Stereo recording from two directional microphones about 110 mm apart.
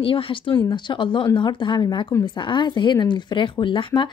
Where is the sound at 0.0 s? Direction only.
55° left (ahead or behind).